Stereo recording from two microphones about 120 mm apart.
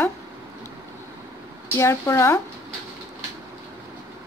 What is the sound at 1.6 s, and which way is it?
Speech, 25° left (ahead or behind).